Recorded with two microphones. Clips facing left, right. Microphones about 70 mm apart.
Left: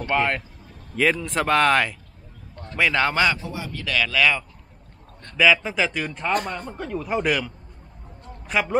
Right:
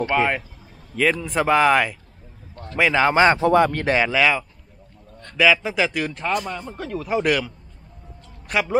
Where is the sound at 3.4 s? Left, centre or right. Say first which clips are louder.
Right 16 dB; right.